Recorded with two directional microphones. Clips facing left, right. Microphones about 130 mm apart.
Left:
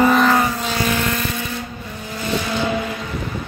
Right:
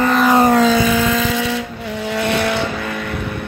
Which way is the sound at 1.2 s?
90° right.